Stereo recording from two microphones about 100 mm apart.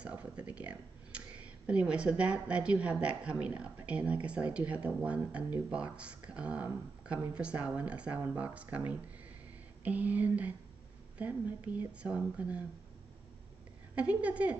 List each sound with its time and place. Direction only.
0.0 s speech: 10° right (ahead or behind)
13.9 s speech: 15° right (ahead or behind)